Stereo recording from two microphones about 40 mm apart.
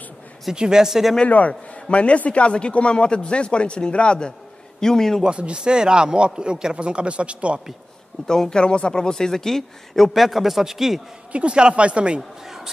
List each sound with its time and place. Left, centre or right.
0.5 s speech: centre
1.9 s speech: left
4.7 s speech: centre
5.3 s a man's voice: right
8.3 s speech: centre
11.3 s a man's voice: right
12.2 s speech: centre